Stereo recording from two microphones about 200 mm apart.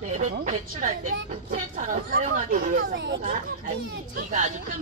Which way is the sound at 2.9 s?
60° right (ahead or behind).